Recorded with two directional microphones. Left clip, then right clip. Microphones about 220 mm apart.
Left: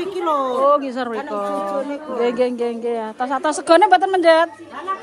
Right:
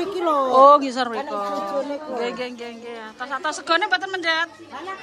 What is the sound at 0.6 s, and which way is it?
Speech, 5° right (ahead or behind).